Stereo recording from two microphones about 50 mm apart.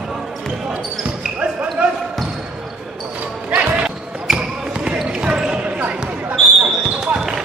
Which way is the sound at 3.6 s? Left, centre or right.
Right.